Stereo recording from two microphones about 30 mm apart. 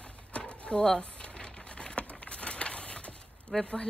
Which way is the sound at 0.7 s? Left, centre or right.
Left.